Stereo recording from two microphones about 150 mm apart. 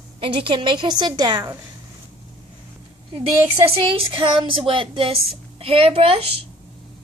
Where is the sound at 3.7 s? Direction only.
35° right (ahead or behind).